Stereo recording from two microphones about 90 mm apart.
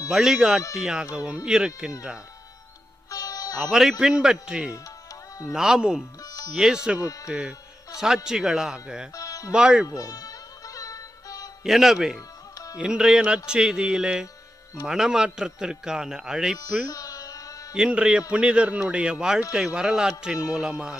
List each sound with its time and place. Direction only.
0.1 s a man's voice: 5° right (ahead or behind)
3.1 s music: 40° left (ahead or behind)
4.0 s a man's voice: 10° right (ahead or behind)
6.2 s music: 40° left (ahead or behind)
6.5 s a man's voice: 5° right (ahead or behind)
9.1 s music: 40° left (ahead or behind)
9.5 s a man's voice: 10° right (ahead or behind)
9.8 s music: 40° left (ahead or behind)
11.6 s a man's voice: 5° right (ahead or behind)
16.8 s carnatic music: 40° left (ahead or behind)
17.7 s a man's voice: 10° right (ahead or behind)